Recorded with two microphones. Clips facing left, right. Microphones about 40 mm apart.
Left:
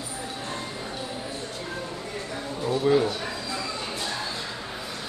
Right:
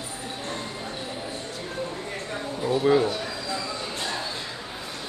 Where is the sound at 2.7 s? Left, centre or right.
Centre.